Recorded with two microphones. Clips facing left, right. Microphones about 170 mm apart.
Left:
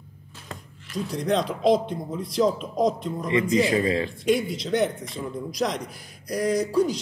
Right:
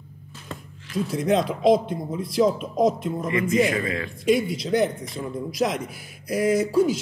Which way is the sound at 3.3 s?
30° left (ahead or behind).